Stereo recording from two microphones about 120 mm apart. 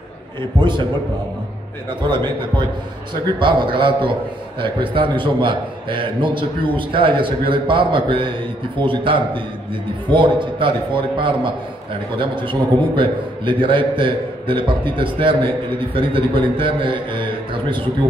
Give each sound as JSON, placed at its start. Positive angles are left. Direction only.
{"t": 0.4, "sound": "a man's voice", "side_deg": -40}
{"t": 2.0, "sound": "a man's voice", "side_deg": -40}